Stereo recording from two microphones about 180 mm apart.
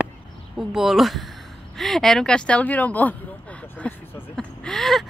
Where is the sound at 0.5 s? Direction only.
Centre (ahead or behind).